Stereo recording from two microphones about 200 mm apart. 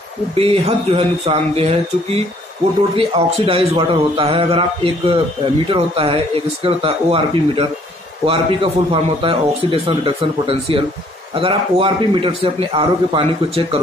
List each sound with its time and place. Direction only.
0.4 s a man's voice: 30° right (ahead or behind)
3.0 s a man's voice: 30° right (ahead or behind)